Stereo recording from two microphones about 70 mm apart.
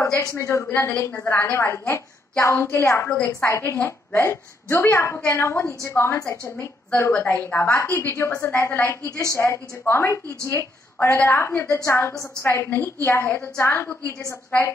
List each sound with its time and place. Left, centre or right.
0.0 s a woman's voice: left
3.7 s a woman's voice: left
4.2 s a woman's voice: left
7.1 s a woman's voice: left
7.9 s a woman's voice: left
8.3 s a woman's voice: left
9.0 s a woman's voice: left
11.0 s a woman's voice: left